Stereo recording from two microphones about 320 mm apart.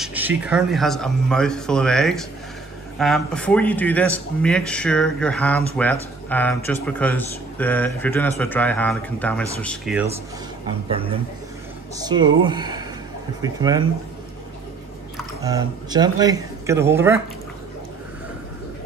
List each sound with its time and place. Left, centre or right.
0.0 s a sound: centre
0.4 s speech: centre
10.9 s speech: centre
15.4 s speech: centre